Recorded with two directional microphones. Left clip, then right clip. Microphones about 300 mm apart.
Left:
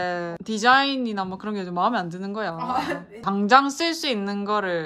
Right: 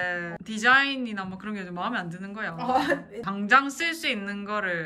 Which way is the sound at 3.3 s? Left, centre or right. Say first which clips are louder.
Left 4 dB; centre.